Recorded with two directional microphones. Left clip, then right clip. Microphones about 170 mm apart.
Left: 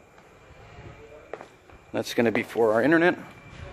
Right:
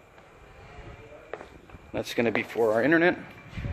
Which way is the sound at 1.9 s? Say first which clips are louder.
Left 2 dB; 35° left (ahead or behind).